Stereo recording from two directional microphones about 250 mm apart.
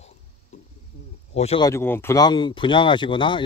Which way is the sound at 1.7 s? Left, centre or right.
Centre.